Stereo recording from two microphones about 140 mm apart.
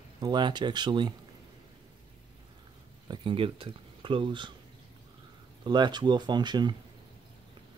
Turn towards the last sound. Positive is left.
turn(degrees=-30)  # may be behind; listen again after turning